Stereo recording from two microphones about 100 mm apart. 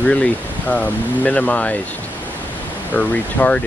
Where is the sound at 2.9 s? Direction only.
10° left (ahead or behind).